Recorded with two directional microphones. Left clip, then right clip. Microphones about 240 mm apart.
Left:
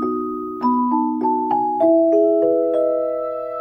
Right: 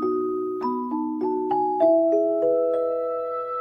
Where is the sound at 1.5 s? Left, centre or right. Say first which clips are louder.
Left 2 dB; centre.